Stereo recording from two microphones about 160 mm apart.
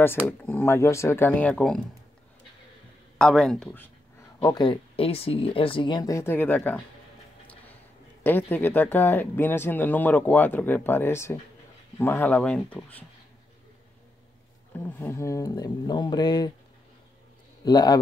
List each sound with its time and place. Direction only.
0.3 s speech: 10° left (ahead or behind)
3.2 s speech: 5° left (ahead or behind)
4.4 s speech: 25° left (ahead or behind)
8.2 s speech: 10° left (ahead or behind)
14.9 s speech: 15° left (ahead or behind)
17.6 s speech: 25° left (ahead or behind)